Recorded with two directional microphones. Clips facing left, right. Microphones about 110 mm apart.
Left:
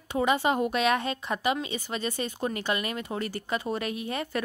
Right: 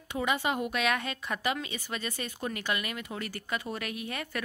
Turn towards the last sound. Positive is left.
turn(degrees=30)  # may be behind; listen again after turning